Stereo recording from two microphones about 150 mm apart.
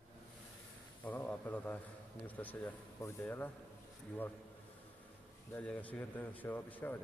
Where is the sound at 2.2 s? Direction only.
10° left (ahead or behind).